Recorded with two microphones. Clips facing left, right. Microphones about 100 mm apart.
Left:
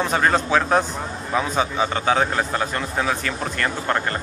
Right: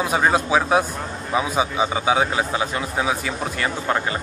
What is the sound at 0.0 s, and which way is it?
A man's voice, 10° right (ahead or behind).